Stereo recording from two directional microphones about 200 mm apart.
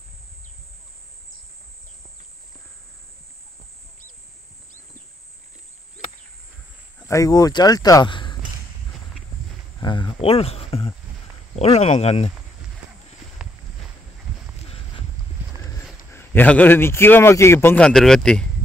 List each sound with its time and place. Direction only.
7.1 s speech: 15° left (ahead or behind)
9.8 s cricket: 25° left (ahead or behind)
10.2 s speech: 30° left (ahead or behind)
15.6 s speech: 10° left (ahead or behind)